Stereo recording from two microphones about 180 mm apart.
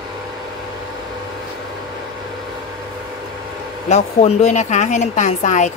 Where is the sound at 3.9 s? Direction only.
40° left (ahead or behind).